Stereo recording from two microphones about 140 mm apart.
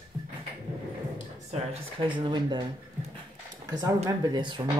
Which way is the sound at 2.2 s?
30° right (ahead or behind).